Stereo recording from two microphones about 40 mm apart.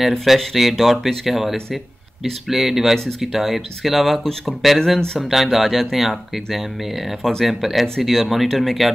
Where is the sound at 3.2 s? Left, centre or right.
Centre.